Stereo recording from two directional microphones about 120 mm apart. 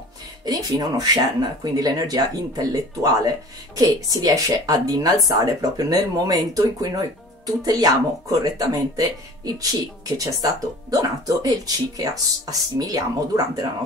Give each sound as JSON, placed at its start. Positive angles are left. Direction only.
{"t": 0.5, "sound": "speech", "side_deg": -30}